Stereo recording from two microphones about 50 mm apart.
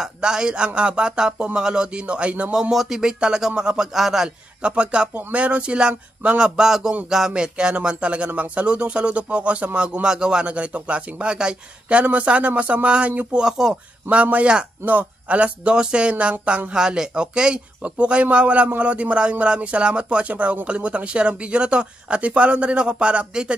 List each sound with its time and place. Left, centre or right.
0.0 s speech: centre
2.5 s speech: centre
4.6 s speech: right
14.1 s speech: right